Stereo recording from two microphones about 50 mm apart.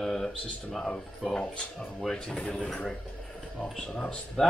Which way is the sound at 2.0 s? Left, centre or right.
Centre.